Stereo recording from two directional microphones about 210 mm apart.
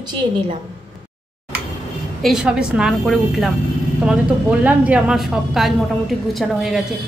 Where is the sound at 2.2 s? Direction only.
5° right (ahead or behind).